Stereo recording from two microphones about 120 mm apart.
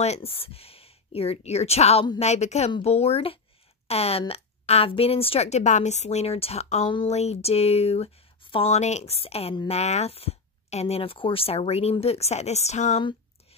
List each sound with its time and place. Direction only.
0.0 s a woman's voice: 60° left (ahead or behind)